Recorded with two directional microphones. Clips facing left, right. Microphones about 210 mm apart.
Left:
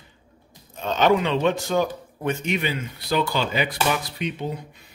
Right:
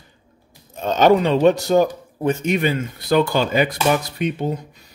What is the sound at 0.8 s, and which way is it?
A man's voice, 40° right (ahead or behind).